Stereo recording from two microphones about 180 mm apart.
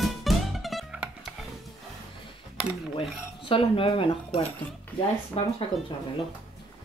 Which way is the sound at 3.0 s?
30° left (ahead or behind).